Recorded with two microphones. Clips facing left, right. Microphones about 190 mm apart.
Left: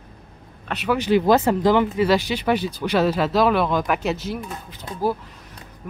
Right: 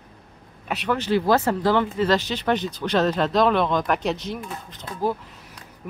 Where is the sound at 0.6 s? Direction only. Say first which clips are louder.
Left 2 dB; centre (ahead or behind).